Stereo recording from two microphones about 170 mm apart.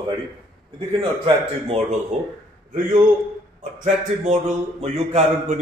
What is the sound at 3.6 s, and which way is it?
A man's voice, 45° right (ahead or behind).